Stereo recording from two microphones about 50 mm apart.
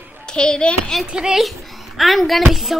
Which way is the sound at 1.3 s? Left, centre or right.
Centre.